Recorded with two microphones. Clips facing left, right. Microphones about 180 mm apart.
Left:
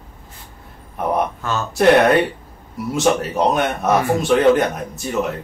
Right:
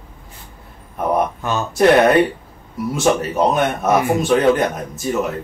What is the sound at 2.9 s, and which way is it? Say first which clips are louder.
Speech: even; centre (ahead or behind).